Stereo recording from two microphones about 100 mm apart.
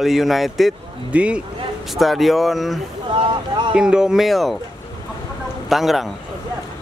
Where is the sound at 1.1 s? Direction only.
10° right (ahead or behind).